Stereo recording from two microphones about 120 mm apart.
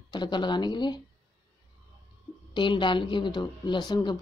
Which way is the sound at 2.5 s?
40° left (ahead or behind).